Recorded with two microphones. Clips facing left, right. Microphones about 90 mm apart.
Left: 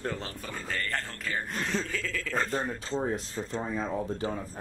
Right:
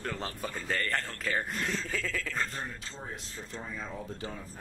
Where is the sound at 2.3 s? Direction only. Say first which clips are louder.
Left 5 dB; 50° left (ahead or behind).